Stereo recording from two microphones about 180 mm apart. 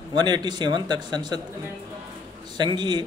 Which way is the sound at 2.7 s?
25° right (ahead or behind).